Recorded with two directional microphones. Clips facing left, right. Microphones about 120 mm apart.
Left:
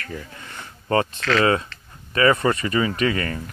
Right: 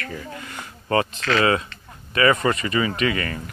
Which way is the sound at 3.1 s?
40° left (ahead or behind).